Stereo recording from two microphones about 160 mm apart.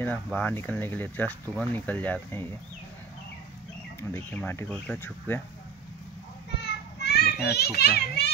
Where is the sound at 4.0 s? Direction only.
15° left (ahead or behind).